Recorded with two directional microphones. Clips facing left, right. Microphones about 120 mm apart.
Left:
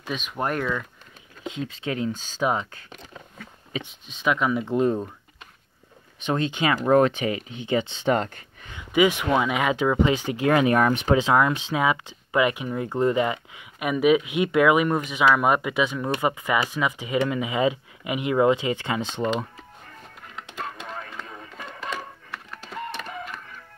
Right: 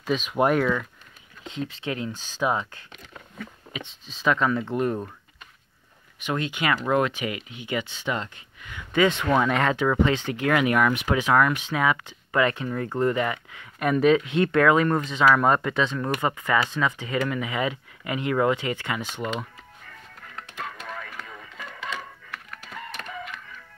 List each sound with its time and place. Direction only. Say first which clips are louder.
0.0 s speech: right 6 dB; centre (ahead or behind)
1.8 s speech: left 3 dB; 20° left (ahead or behind)
3.8 s speech: right 2 dB; 5° left (ahead or behind)
6.2 s speech: left 2 dB; 25° left (ahead or behind)
8.1 s speech: left 7 dB; 45° left (ahead or behind)
8.9 s speech: left 1 dB; 15° left (ahead or behind)
13.7 s speech: even; 10° left (ahead or behind)
20.3 s music: left 2 dB; 20° left (ahead or behind)
21.7 s a sound: left 2 dB; 40° left (ahead or behind)
22.3 s printer: left 3 dB; 30° left (ahead or behind)
23.0 s music: left 1 dB; 35° left (ahead or behind)